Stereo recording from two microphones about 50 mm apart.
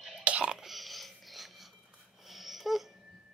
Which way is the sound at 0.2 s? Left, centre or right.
Right.